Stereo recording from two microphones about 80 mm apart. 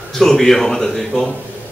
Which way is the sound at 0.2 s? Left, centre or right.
Centre.